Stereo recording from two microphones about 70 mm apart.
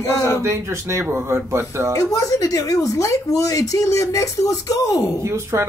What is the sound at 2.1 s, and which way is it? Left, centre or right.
Speech, left.